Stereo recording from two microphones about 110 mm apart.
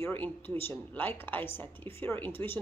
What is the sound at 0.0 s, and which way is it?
A woman's voice, 15° left (ahead or behind).